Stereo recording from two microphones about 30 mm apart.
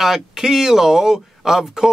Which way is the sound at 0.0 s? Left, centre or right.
Centre.